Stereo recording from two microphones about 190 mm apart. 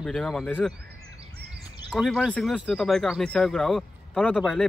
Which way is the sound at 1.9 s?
Centre (ahead or behind).